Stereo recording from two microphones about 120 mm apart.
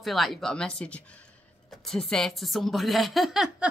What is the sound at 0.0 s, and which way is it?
A woman's voice, centre (ahead or behind).